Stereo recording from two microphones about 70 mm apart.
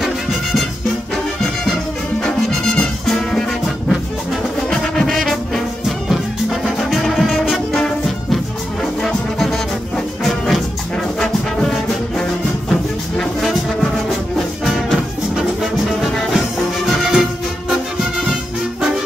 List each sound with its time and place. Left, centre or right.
2.2 s music: centre
7.7 s music: centre
11.1 s brass instrument: centre
13.2 s brass instrument: centre
14.6 s music: centre